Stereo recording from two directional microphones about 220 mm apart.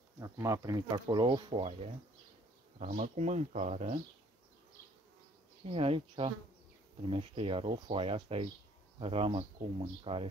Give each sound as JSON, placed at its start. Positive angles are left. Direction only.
{"t": 0.2, "sound": "speech", "side_deg": -15}
{"t": 5.7, "sound": "speech", "side_deg": -25}